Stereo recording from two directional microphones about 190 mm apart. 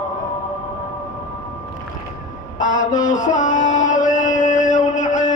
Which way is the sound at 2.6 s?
40° left (ahead or behind).